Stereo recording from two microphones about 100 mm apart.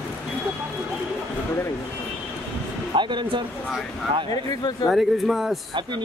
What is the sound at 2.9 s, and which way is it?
Speech, 50° right (ahead or behind).